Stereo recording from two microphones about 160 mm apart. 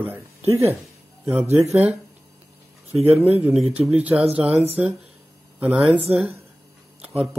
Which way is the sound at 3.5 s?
5° right (ahead or behind).